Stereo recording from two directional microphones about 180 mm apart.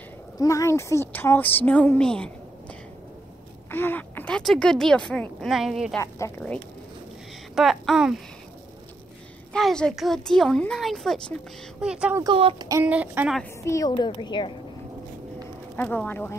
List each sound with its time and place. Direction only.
0.4 s a woman's voice: 15° left (ahead or behind)
3.7 s speech: 10° left (ahead or behind)
5.9 s a woman's voice: 15° left (ahead or behind)
7.5 s speech: centre (ahead or behind)
9.5 s speech: 5° left (ahead or behind)
12.2 s speech: 30° right (ahead or behind)
12.8 s speech: 10° right (ahead or behind)
13.4 s a woman's voice: 15° left (ahead or behind)
15.7 s a woman's voice: 10° left (ahead or behind)